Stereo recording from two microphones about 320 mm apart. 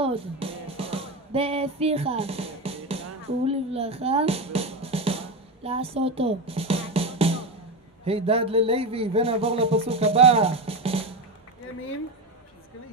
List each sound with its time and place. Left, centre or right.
0.0 s music: centre
3.4 s drum: centre
8.0 s a sound: centre